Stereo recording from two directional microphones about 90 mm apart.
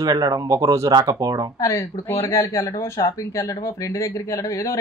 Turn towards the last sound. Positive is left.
turn(degrees=35)  # may be behind; listen again after turning